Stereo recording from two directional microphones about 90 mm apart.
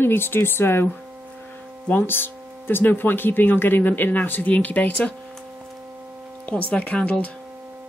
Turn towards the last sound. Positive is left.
turn(degrees=15)  # may be behind; listen again after turning